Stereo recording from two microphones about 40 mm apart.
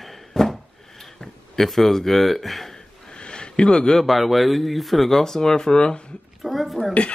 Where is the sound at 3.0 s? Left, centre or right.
Left.